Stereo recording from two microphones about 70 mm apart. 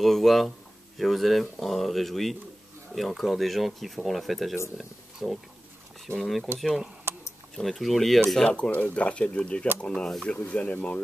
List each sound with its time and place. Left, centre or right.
0.0 s speech: centre
7.1 s a sound: right
7.5 s speech: centre
8.5 s speech: centre
10.3 s speech: centre